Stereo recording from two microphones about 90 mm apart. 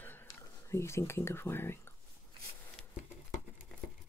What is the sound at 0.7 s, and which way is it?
Speech, 30° left (ahead or behind).